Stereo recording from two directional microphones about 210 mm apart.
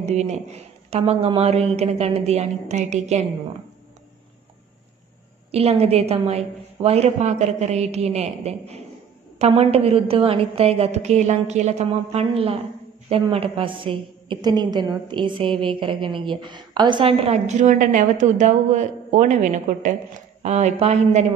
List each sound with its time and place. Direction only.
0.0 s a woman's voice: 30° right (ahead or behind)
5.5 s a woman's voice: 30° right (ahead or behind)